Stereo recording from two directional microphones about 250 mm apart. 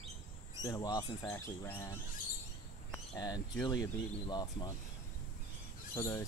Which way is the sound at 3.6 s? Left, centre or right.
Centre.